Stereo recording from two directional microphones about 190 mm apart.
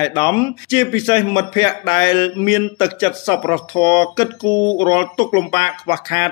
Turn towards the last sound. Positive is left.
turn(degrees=25)  # may be behind; listen again after turning